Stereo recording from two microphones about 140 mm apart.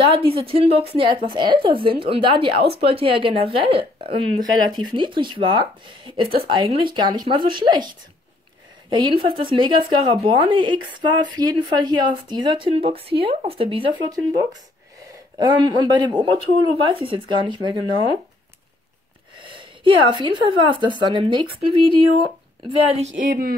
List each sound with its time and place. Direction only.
0.1 s a woman's voice: 40° right (ahead or behind)
8.9 s speech: 35° right (ahead or behind)
14.0 s speech: 25° right (ahead or behind)
19.8 s speech: 35° right (ahead or behind)
22.9 s speech: 65° right (ahead or behind)